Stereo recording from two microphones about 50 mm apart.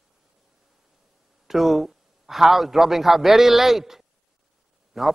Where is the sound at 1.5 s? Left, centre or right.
Centre.